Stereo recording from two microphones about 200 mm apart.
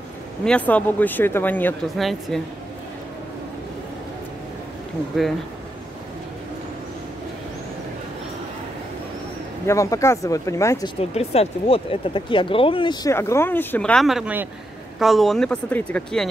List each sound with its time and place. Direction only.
0.5 s speech: 5° left (ahead or behind)
9.7 s speech: 15° left (ahead or behind)
11.0 s speech: 30° left (ahead or behind); by 16.3 s 5° left (ahead or behind)